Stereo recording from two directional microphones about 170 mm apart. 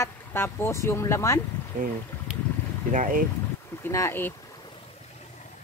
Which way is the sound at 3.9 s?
15° left (ahead or behind).